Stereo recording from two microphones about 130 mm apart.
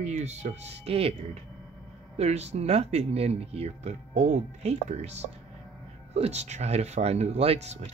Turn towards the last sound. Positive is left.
turn(degrees=-55)  # may be behind; listen again after turning